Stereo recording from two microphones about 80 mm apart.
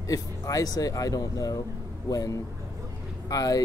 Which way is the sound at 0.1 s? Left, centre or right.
Left.